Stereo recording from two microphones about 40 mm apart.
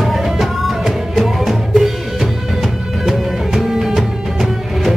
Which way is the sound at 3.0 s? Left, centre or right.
Centre.